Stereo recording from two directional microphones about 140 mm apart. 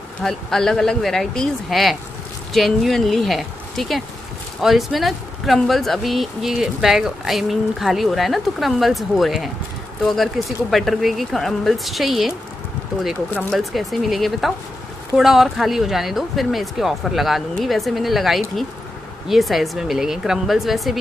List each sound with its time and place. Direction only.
0.2 s speech: centre (ahead or behind)
13.5 s speech: centre (ahead or behind)